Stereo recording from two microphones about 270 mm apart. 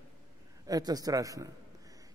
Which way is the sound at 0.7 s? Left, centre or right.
Centre.